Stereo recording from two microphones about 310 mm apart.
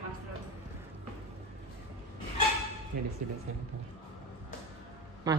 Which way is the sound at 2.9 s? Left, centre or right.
Right.